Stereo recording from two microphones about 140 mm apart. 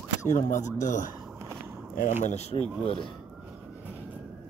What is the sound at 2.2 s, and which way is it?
Speech, 50° left (ahead or behind).